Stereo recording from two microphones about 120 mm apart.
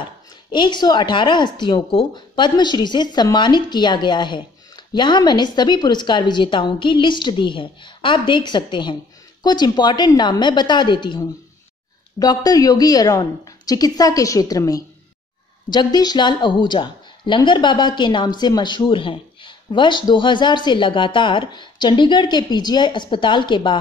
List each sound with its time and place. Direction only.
0.0 s speech: 40° left (ahead or behind)